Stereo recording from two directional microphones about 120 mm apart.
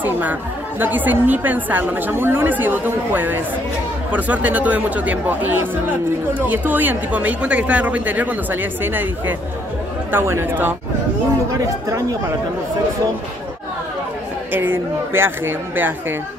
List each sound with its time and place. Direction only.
0.0 s a woman's voice: 15° right (ahead or behind)
10.1 s a woman's voice: 20° right (ahead or behind)
11.9 s speech: 25° right (ahead or behind)
14.5 s a woman's voice: 15° right (ahead or behind)